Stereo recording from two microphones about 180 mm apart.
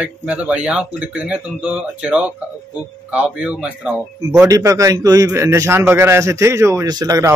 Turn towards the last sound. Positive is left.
turn(degrees=-20)  # may be behind; listen again after turning